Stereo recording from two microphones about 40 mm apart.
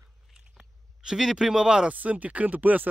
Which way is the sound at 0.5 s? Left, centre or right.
Centre.